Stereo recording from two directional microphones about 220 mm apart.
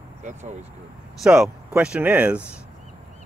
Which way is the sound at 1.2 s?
Centre (ahead or behind).